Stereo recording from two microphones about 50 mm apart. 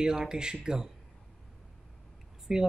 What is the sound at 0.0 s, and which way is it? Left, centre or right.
Speech, centre.